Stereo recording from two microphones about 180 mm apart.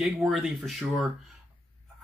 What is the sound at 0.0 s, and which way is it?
Speech, centre (ahead or behind).